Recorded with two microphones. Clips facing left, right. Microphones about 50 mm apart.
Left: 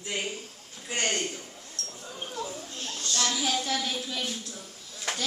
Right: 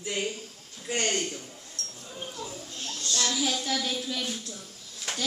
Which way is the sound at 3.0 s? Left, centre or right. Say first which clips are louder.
Even; left.